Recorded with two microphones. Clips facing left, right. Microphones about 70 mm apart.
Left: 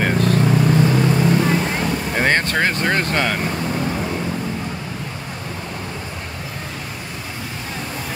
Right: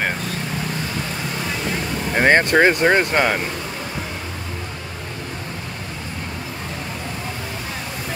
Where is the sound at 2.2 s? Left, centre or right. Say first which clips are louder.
Right 5 dB; centre.